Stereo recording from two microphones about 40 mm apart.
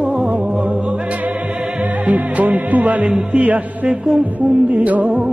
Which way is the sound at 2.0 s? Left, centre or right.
Right.